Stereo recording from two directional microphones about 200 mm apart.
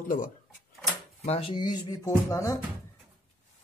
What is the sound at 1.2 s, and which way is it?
Speech, 30° left (ahead or behind).